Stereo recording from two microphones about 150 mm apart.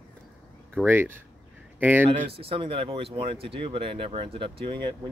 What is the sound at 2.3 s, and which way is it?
Speech, 35° right (ahead or behind).